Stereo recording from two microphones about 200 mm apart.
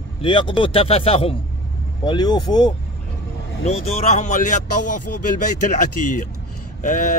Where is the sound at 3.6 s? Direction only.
30° left (ahead or behind).